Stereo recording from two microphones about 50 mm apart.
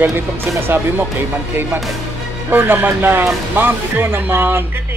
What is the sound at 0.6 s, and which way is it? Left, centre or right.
Speech, right.